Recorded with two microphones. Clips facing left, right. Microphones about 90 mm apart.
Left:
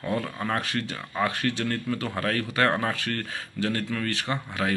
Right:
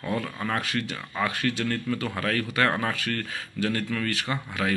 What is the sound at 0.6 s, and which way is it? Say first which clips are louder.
Speech: even; 35° left (ahead or behind).